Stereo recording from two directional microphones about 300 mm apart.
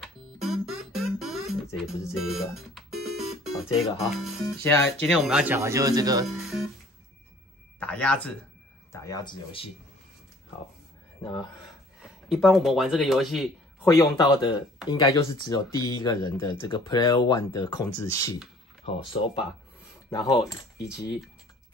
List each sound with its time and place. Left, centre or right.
0.0 s music: centre
3.7 s speech: centre
6.2 s speech: centre
7.8 s speech: centre
12.0 s speech: centre
13.8 s speech: centre